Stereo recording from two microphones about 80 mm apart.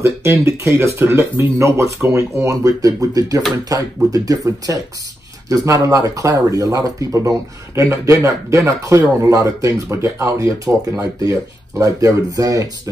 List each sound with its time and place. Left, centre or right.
0.0 s speech: right